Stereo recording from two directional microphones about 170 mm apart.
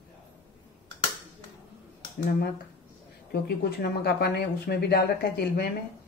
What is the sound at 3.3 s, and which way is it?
Speech, 70° left (ahead or behind).